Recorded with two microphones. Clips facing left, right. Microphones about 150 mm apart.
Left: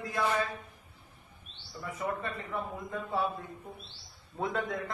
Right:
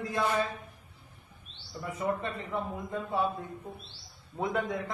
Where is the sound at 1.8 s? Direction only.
20° right (ahead or behind).